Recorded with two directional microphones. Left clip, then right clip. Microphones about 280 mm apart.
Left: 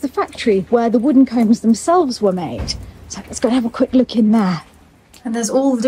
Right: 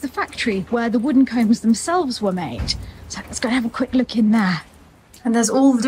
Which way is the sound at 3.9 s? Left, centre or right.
Centre.